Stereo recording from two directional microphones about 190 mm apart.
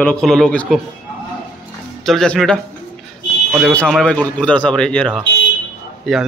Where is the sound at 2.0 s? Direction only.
Centre (ahead or behind).